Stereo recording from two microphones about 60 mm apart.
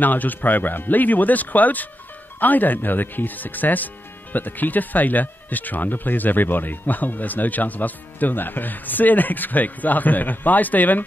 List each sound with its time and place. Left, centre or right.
0.0 s speech: left